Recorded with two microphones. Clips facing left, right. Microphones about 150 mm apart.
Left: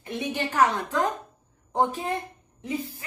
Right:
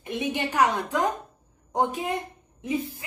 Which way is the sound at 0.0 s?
20° right (ahead or behind).